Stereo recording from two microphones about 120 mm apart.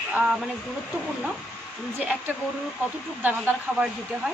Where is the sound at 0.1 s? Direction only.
10° right (ahead or behind).